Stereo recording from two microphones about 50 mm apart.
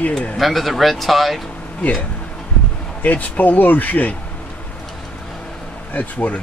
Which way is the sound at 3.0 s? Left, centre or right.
Left.